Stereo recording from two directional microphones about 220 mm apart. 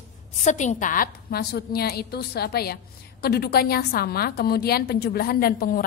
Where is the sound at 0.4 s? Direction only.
35° left (ahead or behind).